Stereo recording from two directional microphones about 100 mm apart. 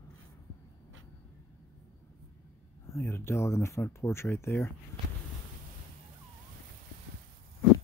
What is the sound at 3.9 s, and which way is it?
Speech, 25° left (ahead or behind).